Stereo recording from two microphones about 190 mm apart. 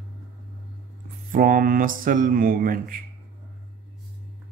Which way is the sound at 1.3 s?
45° right (ahead or behind).